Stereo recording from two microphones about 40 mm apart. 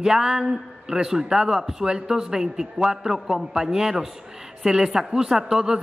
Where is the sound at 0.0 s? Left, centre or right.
Centre.